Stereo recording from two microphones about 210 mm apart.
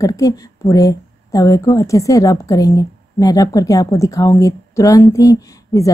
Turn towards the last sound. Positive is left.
turn(degrees=15)  # may be behind; listen again after turning